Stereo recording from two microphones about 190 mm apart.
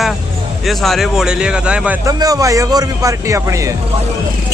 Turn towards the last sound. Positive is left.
turn(degrees=-15)  # may be behind; listen again after turning